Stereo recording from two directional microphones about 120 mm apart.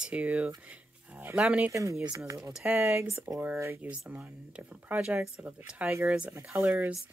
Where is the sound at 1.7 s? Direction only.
25° right (ahead or behind).